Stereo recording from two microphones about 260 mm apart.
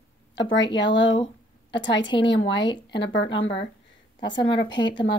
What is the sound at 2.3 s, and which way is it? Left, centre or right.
Speech, left.